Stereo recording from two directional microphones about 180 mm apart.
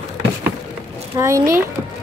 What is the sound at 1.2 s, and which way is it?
Speech, 15° right (ahead or behind).